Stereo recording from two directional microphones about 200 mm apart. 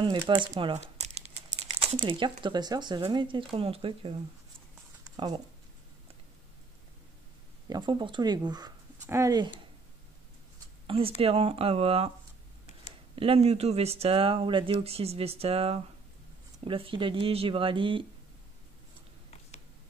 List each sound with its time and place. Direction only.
0.3 s speech: 25° right (ahead or behind)
5.1 s speech: 20° right (ahead or behind)
7.7 s speech: 25° right (ahead or behind)
10.9 s speech: 30° right (ahead or behind)
13.1 s speech: 30° right (ahead or behind)